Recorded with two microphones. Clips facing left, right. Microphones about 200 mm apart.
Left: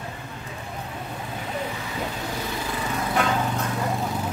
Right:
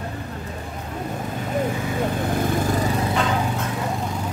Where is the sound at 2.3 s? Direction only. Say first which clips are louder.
Right 8 dB; 50° right (ahead or behind).